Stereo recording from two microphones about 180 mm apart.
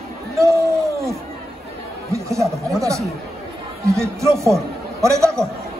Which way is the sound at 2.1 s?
15° right (ahead or behind).